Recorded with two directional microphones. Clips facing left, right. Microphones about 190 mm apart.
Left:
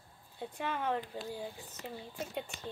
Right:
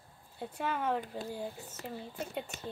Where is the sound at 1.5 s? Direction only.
40° right (ahead or behind).